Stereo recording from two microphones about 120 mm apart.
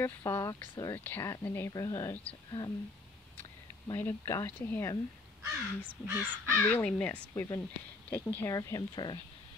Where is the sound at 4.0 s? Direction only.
20° left (ahead or behind).